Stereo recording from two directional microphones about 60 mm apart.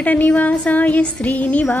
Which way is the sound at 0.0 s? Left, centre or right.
Left.